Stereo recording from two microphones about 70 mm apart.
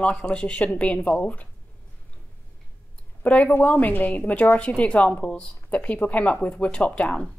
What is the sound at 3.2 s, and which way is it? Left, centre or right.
A woman's voice, left.